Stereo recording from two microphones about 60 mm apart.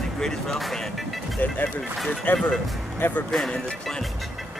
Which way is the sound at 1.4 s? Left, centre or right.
Left.